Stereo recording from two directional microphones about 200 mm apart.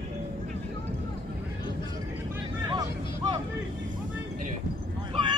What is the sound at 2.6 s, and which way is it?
Vehicle, 20° right (ahead or behind).